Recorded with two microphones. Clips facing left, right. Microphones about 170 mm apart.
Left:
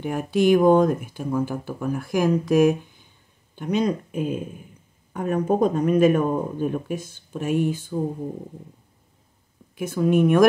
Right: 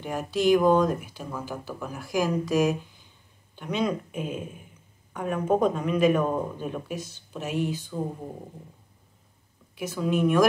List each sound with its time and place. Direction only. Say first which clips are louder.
0.0 s speech: left 4 dB; 55° left (ahead or behind)
3.5 s speech: left 4 dB; 40° left (ahead or behind)
9.8 s speech: left 6 dB; 50° left (ahead or behind)